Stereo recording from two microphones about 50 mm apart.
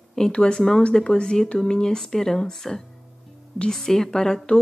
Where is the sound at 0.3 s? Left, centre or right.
Centre.